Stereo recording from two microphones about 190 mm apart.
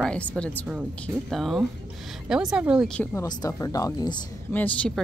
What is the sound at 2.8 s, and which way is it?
Speech, 5° left (ahead or behind).